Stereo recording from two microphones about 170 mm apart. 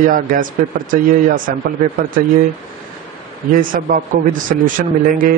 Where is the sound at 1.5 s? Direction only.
55° right (ahead or behind).